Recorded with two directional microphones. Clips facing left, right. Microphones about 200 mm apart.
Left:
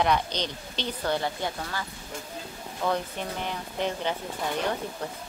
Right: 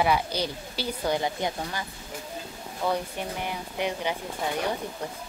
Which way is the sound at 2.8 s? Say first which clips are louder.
Even; 10° right (ahead or behind).